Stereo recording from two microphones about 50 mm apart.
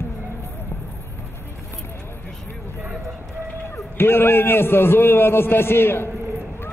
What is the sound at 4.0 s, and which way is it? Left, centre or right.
A man's voice, left.